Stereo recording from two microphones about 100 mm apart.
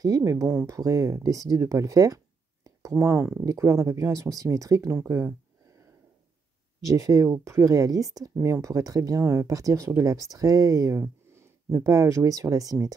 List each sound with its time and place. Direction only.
0.0 s speech: 35° right (ahead or behind)
6.9 s speech: 30° right (ahead or behind)